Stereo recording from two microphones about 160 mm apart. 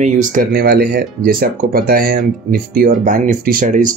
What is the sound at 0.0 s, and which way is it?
Speech, 55° right (ahead or behind).